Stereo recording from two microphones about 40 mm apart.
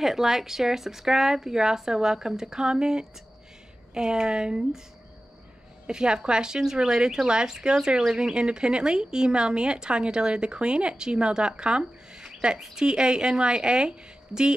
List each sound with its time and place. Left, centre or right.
0.0 s speech: centre
5.9 s speech: centre